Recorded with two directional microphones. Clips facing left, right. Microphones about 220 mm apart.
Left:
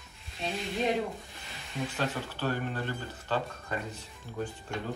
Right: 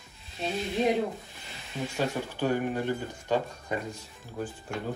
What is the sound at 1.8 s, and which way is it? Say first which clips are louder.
Speech: right 3 dB; 10° right (ahead or behind).